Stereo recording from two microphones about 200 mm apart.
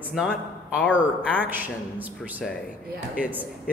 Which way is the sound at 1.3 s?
10° right (ahead or behind).